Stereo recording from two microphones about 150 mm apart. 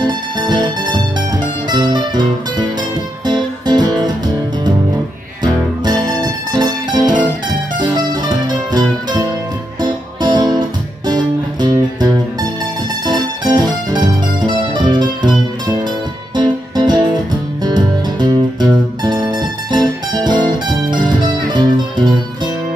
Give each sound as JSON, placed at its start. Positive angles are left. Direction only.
{"t": 0.0, "sound": "music", "side_deg": -30}
{"t": 5.4, "sound": "music", "side_deg": -30}